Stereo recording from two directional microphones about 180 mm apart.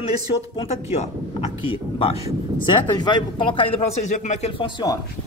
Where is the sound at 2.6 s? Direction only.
25° left (ahead or behind).